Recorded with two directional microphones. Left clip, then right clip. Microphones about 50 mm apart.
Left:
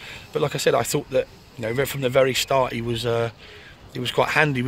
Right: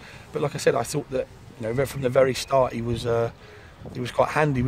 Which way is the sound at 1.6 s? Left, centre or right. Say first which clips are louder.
Left 2 dB; centre.